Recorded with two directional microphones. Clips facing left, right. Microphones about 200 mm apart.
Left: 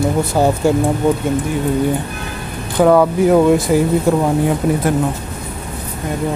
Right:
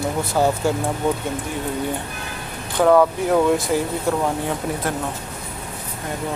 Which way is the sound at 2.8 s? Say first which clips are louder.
Left 4 dB; 5° left (ahead or behind).